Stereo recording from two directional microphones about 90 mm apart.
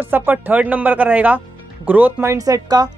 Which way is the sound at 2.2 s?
40° right (ahead or behind).